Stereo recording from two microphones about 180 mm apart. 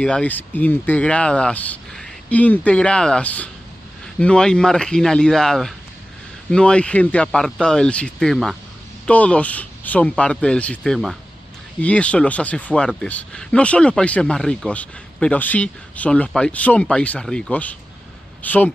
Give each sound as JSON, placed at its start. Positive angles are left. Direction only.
{"t": 0.0, "sound": "speech", "side_deg": 5}